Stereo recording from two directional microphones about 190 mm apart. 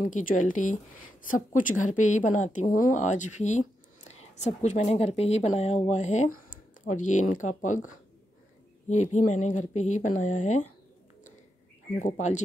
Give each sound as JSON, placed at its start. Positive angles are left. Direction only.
{"t": 0.0, "sound": "a woman's voice", "side_deg": 45}
{"t": 12.0, "sound": "a woman's voice", "side_deg": 40}